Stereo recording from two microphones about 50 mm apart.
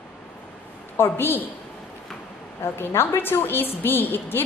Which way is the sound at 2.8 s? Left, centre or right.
Left.